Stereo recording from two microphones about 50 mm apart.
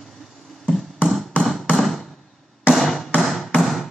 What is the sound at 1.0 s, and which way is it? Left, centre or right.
Chop, centre.